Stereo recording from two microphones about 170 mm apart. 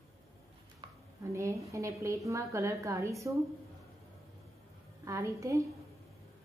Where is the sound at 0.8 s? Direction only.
25° right (ahead or behind).